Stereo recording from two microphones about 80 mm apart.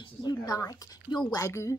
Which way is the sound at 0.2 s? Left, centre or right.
Left.